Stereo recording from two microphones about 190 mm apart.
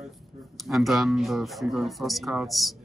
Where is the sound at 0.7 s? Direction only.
Centre (ahead or behind).